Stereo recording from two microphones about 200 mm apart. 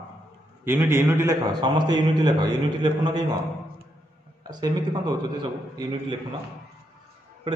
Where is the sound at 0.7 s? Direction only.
10° right (ahead or behind).